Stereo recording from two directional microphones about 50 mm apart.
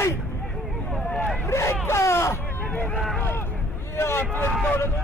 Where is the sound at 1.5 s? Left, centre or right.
Left.